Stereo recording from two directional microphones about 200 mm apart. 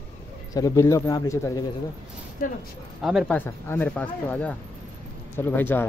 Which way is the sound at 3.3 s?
10° left (ahead or behind).